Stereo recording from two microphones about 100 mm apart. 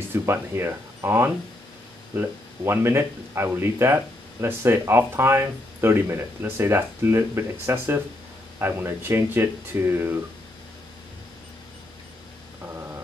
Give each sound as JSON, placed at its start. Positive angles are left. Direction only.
{"t": 0.1, "sound": "speech", "side_deg": -25}